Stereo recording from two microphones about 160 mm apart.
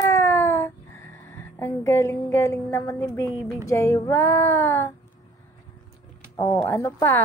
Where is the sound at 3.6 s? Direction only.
20° left (ahead or behind).